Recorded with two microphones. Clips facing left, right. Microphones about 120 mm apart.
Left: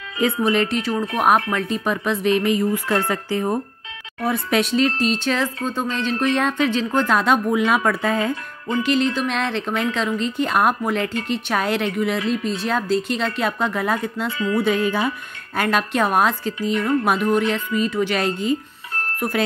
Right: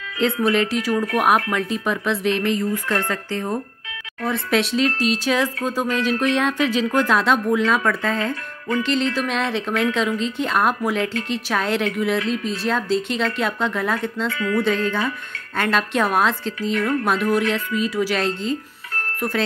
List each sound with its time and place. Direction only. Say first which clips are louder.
0.2 s speech: even; centre (ahead or behind); by 8.8 s 20° left (ahead or behind)
8.8 s speech: left 3 dB; centre (ahead or behind)
14.3 s music: left 2 dB; 25° left (ahead or behind)
14.6 s speech: left 2 dB; 10° left (ahead or behind)